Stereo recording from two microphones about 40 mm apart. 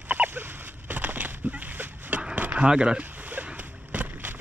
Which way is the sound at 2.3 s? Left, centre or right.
Right.